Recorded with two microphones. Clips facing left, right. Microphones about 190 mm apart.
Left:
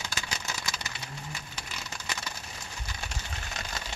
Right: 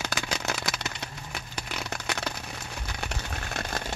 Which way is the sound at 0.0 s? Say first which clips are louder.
Right 7 dB; 60° right (ahead or behind).